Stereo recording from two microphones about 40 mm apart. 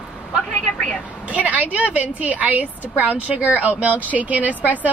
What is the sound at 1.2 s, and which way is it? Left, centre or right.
Speech, right.